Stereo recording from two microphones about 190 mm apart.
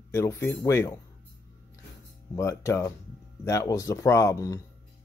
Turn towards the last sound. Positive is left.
turn(degrees=15)  # may be behind; listen again after turning